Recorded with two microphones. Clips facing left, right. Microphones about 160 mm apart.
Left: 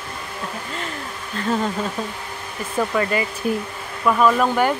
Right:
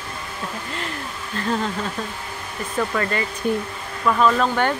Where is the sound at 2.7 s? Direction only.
10° left (ahead or behind).